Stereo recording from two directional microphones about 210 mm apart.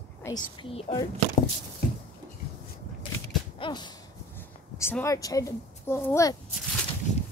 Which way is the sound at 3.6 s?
20° left (ahead or behind).